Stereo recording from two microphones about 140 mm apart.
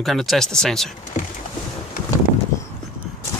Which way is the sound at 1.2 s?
70° left (ahead or behind).